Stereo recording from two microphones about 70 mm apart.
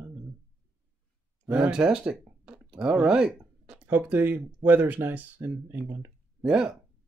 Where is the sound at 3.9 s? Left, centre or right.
Right.